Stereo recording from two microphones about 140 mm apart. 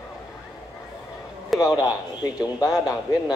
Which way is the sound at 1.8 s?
25° left (ahead or behind).